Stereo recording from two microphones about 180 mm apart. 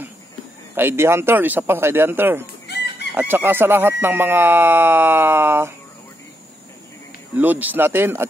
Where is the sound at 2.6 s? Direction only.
65° left (ahead or behind).